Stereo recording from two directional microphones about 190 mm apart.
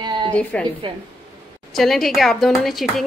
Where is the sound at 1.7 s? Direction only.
Centre (ahead or behind).